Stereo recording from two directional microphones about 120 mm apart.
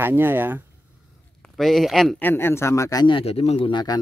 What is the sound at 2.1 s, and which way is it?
Speech, 20° left (ahead or behind).